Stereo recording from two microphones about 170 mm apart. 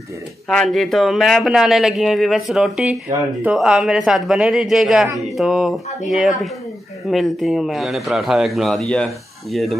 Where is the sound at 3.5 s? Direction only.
5° right (ahead or behind).